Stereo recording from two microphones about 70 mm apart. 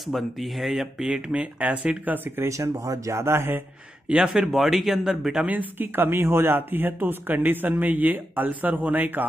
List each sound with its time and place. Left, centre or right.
0.0 s speech: centre
2.1 s speech: right
2.5 s speech: right
4.1 s speech: centre
5.4 s speech: right